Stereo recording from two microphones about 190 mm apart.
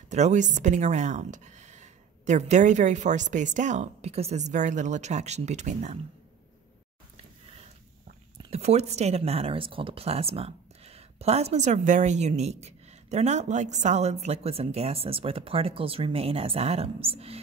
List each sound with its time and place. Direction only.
0.1 s speech: 40° right (ahead or behind)
8.4 s speech: 30° right (ahead or behind)